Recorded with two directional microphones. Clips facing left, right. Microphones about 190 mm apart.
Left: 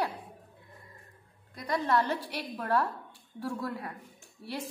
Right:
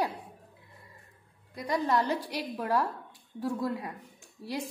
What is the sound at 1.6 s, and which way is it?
A woman's voice, 15° right (ahead or behind).